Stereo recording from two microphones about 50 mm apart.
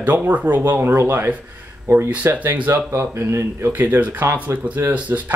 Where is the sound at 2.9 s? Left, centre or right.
Right.